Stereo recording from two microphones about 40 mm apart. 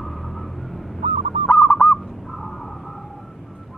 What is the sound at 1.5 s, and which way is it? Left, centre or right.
Owl, left.